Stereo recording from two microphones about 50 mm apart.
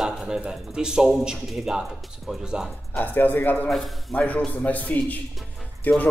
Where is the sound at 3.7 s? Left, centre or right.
Centre.